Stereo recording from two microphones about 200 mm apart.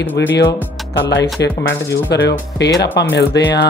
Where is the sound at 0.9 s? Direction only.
60° left (ahead or behind).